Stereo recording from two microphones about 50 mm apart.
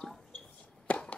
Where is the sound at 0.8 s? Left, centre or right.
Left.